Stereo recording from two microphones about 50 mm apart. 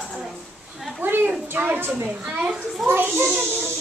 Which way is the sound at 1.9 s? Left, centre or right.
Right.